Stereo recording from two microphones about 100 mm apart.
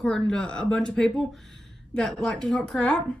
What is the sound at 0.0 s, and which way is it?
A woman's voice, 5° left (ahead or behind).